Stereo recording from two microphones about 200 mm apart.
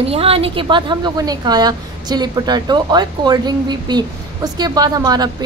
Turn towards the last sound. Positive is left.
turn(degrees=-20)  # may be behind; listen again after turning